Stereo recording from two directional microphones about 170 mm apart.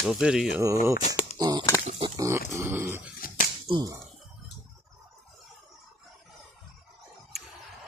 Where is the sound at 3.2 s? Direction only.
55° left (ahead or behind).